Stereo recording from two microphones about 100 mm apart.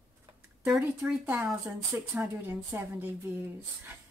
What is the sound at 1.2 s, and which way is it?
A woman's voice, 20° right (ahead or behind).